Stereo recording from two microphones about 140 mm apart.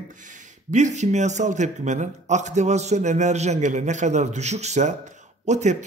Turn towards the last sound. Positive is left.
turn(degrees=-55)  # may be behind; listen again after turning